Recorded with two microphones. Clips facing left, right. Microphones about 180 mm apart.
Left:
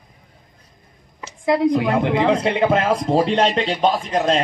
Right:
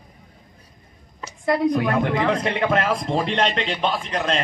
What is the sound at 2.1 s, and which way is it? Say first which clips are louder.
A man's voice: left 4 dB; 25° left (ahead or behind).